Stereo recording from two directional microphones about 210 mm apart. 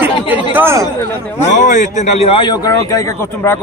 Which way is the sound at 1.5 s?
35° left (ahead or behind).